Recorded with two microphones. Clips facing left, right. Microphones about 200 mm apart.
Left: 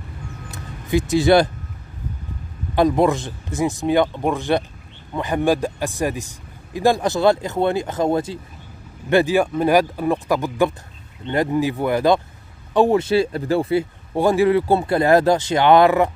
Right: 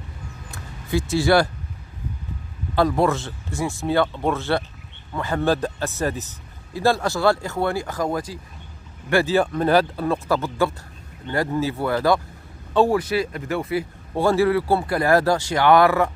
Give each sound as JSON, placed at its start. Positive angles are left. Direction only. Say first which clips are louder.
{"t": 0.5, "sound": "music", "louder": "left 4 dB", "side_deg": 20}
{"t": 2.7, "sound": "speech", "louder": "left 3 dB", "side_deg": 20}
{"t": 9.1, "sound": "speech", "louder": "left 3 dB", "side_deg": 15}
{"t": 14.1, "sound": "speech", "louder": "left 2 dB", "side_deg": 15}